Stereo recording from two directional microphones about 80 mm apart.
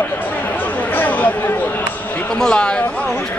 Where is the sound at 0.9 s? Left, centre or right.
Left.